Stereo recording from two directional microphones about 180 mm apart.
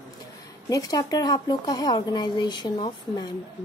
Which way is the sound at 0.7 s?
20° left (ahead or behind).